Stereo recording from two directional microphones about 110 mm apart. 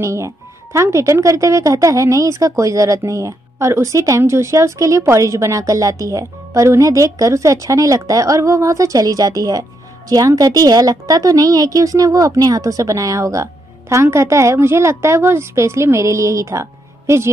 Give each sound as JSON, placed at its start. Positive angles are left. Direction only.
{"t": 0.0, "sound": "speech", "side_deg": -25}